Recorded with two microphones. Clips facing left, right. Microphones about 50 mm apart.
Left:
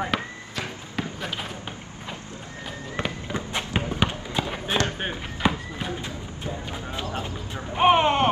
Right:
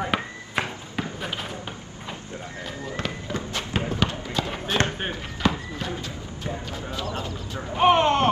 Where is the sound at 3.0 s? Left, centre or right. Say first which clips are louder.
Left 2 dB; left.